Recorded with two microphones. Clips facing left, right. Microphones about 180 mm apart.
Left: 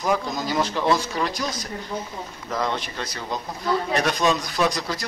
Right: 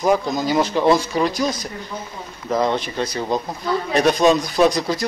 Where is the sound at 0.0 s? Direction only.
15° right (ahead or behind).